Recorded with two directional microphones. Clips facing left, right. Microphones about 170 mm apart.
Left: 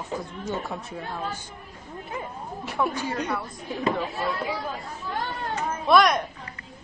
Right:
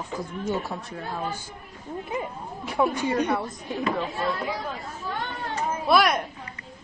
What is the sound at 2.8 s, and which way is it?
Speech, 25° right (ahead or behind).